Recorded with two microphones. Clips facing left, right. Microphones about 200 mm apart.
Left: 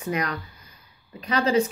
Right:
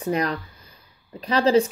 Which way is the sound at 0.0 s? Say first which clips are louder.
Right 4 dB; 30° right (ahead or behind).